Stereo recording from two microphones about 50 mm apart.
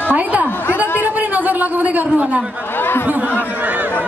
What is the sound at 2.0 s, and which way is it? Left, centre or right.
Speech, right.